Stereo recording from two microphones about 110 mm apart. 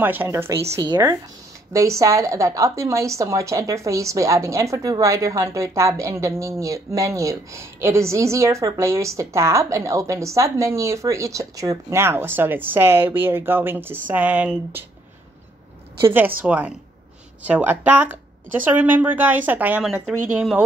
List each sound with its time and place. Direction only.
0.0 s a woman's voice: 20° right (ahead or behind)
0.8 s a woman's voice: 35° right (ahead or behind); by 14.9 s 15° right (ahead or behind)
16.0 s a woman's voice: 20° right (ahead or behind)
19.8 s speech: 5° right (ahead or behind)